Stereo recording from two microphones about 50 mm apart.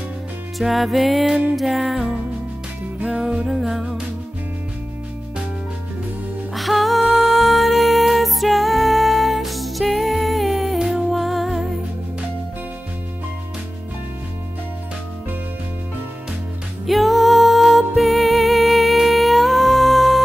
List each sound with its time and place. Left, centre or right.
0.6 s music: centre
3.0 s music: centre
3.4 s music: centre
6.5 s music: centre
16.8 s music: centre